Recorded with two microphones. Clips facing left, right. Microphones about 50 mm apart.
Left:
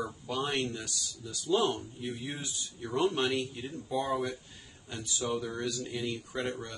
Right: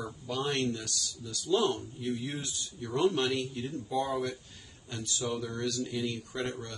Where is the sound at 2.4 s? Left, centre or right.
Centre.